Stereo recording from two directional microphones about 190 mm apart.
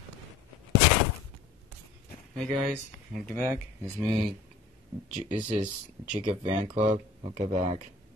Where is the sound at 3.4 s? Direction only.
15° right (ahead or behind).